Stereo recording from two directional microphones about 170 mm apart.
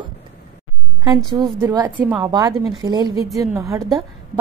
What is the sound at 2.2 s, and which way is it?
A woman's voice, 20° right (ahead or behind).